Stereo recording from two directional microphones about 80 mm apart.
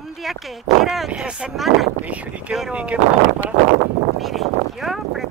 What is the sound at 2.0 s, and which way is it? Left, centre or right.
Speech, centre.